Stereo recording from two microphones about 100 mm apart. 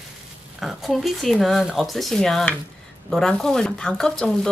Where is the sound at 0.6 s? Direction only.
Centre (ahead or behind).